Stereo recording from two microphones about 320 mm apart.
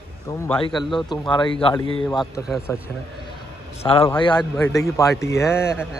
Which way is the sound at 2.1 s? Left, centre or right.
Centre.